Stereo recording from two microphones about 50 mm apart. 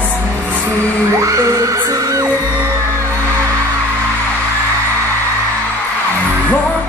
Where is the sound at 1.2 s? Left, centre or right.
Right.